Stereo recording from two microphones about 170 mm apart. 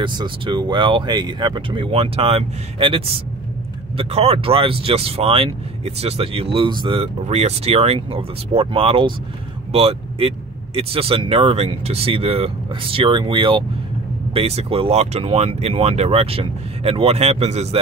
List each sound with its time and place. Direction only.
0.0 s speech: 25° right (ahead or behind)